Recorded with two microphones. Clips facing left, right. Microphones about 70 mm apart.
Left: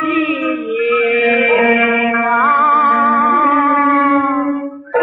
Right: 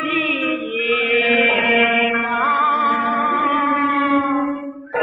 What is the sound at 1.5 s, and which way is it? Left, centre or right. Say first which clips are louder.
Music: left 6 dB; left.